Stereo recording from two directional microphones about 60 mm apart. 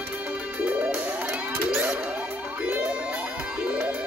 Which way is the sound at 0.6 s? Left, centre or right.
Right.